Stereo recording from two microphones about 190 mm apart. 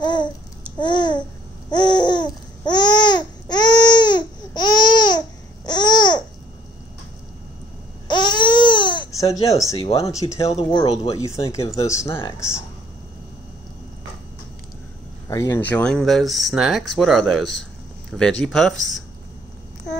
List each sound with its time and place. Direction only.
0.0 s babbling: 25° left (ahead or behind)
8.1 s baby cry: 25° left (ahead or behind)
9.8 s speech: 30° left (ahead or behind)
10.1 s speech: 15° left (ahead or behind)
10.7 s speech: 30° left (ahead or behind)
11.5 s speech: 15° left (ahead or behind)
15.2 s speech: 15° left (ahead or behind); by 19.0 s centre (ahead or behind)